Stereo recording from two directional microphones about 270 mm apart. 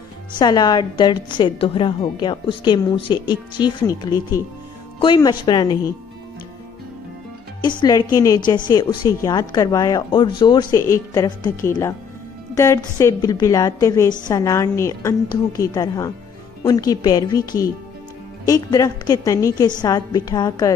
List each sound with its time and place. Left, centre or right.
0.4 s a woman's voice: centre
7.8 s a woman's voice: centre
18.4 s a woman's voice: centre